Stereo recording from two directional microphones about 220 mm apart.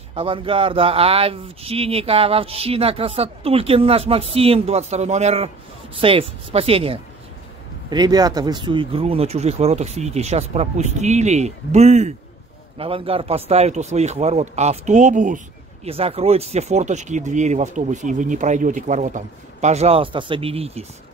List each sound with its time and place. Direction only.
0.1 s speech: 25° right (ahead or behind)